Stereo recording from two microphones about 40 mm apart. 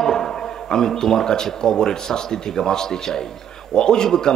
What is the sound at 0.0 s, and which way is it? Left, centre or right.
A man's voice, centre.